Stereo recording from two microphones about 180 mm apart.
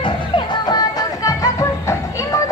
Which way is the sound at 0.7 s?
20° left (ahead or behind).